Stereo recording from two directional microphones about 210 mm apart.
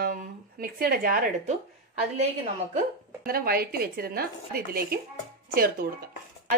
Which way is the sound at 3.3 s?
45° right (ahead or behind).